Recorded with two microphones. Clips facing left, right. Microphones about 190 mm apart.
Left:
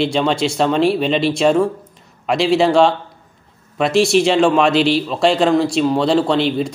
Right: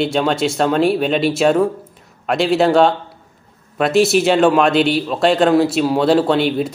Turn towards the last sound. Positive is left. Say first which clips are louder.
# right 1 dB
turn(degrees=-5)  # may be behind; listen again after turning